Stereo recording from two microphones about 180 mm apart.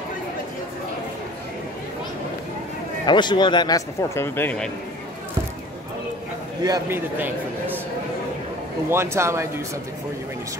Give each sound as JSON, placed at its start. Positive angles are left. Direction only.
{"t": 3.1, "sound": "a man's voice", "side_deg": 25}
{"t": 6.6, "sound": "a man's voice", "side_deg": -20}
{"t": 7.2, "sound": "a sound", "side_deg": -10}
{"t": 8.9, "sound": "speech", "side_deg": -15}